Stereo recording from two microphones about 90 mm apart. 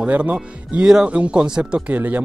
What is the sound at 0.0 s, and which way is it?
Speech, 15° right (ahead or behind).